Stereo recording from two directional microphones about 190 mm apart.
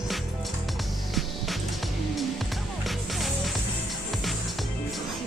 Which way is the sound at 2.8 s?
Centre (ahead or behind).